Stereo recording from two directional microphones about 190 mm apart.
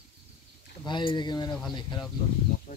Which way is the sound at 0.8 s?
25° left (ahead or behind).